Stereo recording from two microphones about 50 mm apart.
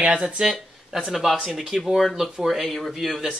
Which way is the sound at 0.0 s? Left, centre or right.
Right.